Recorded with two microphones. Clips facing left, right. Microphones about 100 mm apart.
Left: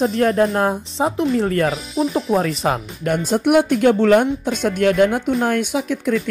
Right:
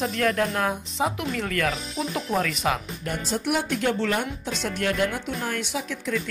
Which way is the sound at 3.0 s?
60° left (ahead or behind).